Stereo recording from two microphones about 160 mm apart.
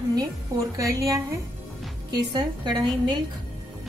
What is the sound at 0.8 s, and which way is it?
A woman's voice, 20° right (ahead or behind).